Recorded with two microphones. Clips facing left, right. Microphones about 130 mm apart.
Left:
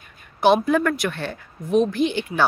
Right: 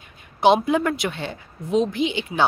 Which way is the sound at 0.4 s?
20° right (ahead or behind).